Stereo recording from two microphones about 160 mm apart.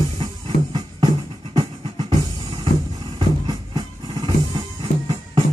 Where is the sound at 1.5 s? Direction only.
30° right (ahead or behind).